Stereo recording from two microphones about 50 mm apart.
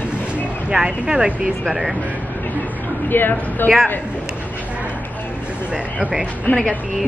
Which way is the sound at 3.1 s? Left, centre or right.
Left.